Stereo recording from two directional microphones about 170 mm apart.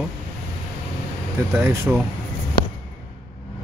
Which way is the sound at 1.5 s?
15° right (ahead or behind).